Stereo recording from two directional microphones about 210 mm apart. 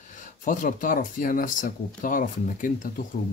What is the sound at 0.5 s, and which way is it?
Speech, 40° left (ahead or behind).